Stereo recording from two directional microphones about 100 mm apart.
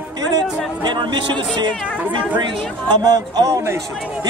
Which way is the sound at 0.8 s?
50° right (ahead or behind).